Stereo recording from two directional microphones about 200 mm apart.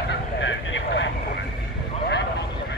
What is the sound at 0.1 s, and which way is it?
Vehicle, 65° left (ahead or behind).